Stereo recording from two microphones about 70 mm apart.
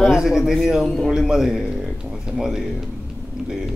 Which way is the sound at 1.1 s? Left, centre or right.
Centre.